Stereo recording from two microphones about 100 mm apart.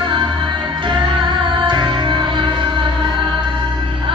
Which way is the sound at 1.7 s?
50° right (ahead or behind).